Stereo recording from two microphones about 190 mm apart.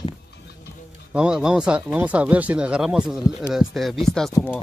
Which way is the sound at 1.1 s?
5° right (ahead or behind).